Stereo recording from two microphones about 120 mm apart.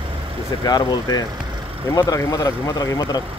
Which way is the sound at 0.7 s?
35° left (ahead or behind).